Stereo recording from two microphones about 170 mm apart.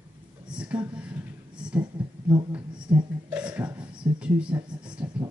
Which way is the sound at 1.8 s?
25° right (ahead or behind).